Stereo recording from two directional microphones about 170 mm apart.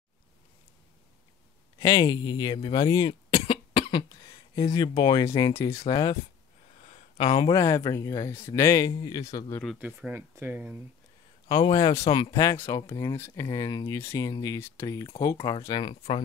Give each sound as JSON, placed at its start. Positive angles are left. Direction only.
{"t": 1.8, "sound": "speech", "side_deg": 20}
{"t": 6.9, "sound": "a sound", "side_deg": 35}
{"t": 7.5, "sound": "speech", "side_deg": 20}
{"t": 9.8, "sound": "speech", "side_deg": -10}
{"t": 11.4, "sound": "a man's voice", "side_deg": 30}
{"t": 12.2, "sound": "speech", "side_deg": 20}
{"t": 13.1, "sound": "speech", "side_deg": 15}
{"t": 15.3, "sound": "a man's voice", "side_deg": 30}